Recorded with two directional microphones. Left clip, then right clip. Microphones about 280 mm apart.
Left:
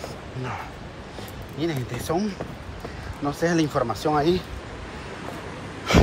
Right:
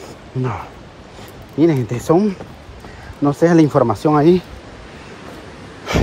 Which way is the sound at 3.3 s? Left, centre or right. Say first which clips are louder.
Right 10 dB; centre.